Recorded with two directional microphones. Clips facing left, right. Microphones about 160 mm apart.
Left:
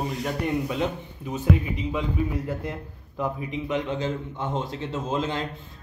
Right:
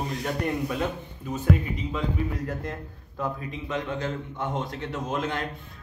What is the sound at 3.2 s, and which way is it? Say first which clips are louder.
A man's voice: left 3 dB; 15° left (ahead or behind).